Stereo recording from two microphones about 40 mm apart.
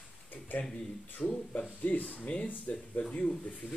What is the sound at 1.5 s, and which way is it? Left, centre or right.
Speech, left.